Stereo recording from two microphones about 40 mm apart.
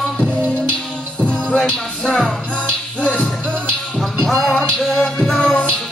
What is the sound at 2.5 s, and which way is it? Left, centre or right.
Music, left.